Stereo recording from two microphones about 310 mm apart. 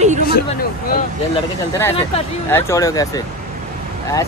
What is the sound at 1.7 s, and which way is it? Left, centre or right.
Speech, centre.